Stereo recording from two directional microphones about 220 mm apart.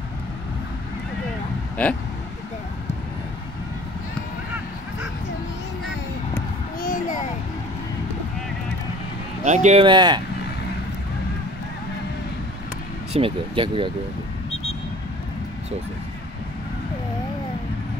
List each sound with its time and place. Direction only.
1.8 s speech: 5° left (ahead or behind)
6.8 s a sound: 35° left (ahead or behind)
9.4 s speech: 30° right (ahead or behind)
13.1 s speech: 25° right (ahead or behind)